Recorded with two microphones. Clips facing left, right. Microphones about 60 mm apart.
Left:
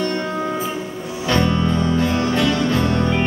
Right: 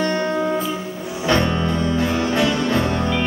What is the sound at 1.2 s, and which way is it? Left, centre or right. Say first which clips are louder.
Music: even; centre.